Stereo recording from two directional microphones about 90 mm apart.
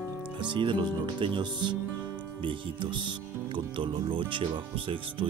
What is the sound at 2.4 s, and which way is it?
Speech, 75° right (ahead or behind).